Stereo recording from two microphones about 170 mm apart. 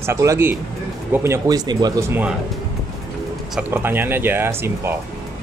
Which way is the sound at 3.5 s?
10° right (ahead or behind).